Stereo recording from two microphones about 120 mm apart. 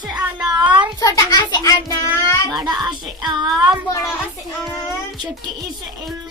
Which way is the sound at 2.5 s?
35° right (ahead or behind).